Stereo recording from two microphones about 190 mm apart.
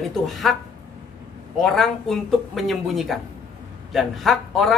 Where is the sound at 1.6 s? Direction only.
Centre (ahead or behind).